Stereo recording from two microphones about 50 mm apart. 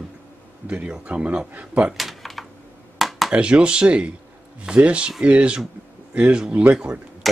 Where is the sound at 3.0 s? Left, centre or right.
Centre.